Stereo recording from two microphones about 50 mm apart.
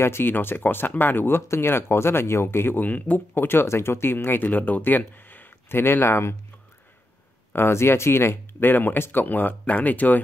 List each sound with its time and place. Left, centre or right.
0.0 s speech: left
0.3 s speech: left
2.8 s speech: left
3.4 s speech: left
7.5 s speech: left
8.6 s speech: left